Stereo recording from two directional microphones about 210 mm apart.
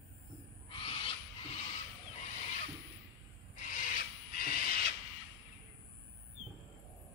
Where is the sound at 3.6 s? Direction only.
40° left (ahead or behind).